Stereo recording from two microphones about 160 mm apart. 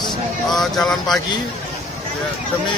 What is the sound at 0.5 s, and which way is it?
Speech, centre (ahead or behind).